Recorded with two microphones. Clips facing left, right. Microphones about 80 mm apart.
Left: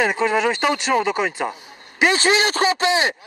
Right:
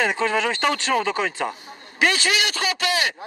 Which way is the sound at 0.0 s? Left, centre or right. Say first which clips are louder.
Left 3 dB; centre.